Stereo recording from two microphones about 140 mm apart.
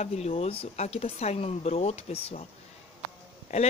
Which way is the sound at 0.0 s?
50° left (ahead or behind).